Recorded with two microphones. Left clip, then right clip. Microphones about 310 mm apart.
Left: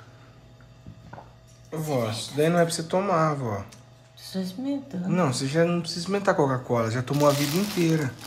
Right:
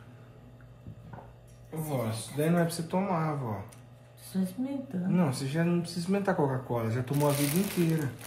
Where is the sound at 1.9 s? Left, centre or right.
Left.